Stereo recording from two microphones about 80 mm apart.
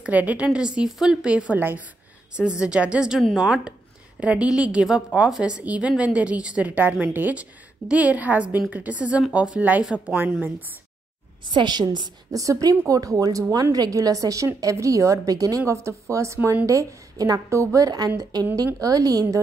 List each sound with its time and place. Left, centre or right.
0.0 s a woman's voice: centre
2.3 s a woman's voice: centre
11.5 s a woman's voice: right
12.3 s a woman's voice: right